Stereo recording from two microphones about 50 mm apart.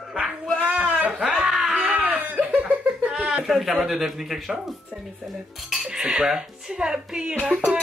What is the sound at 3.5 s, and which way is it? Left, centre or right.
A man's voice, centre.